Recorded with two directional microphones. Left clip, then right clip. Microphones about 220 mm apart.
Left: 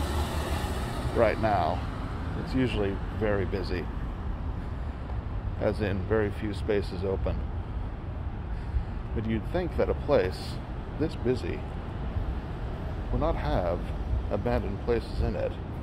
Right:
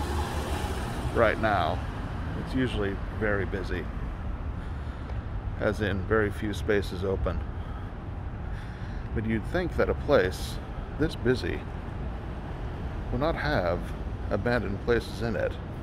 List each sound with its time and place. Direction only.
1.1 s speech: 5° right (ahead or behind)
5.6 s speech: 10° right (ahead or behind)
9.3 s speech: 15° right (ahead or behind)
13.2 s speech: 20° right (ahead or behind)